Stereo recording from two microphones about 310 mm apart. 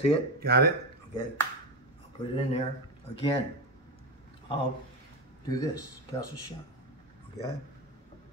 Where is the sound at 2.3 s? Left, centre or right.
Centre.